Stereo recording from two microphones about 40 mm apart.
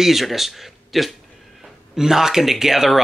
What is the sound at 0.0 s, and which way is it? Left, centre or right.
Speech, centre.